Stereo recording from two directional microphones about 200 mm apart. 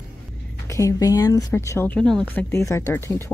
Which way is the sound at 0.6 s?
15° left (ahead or behind).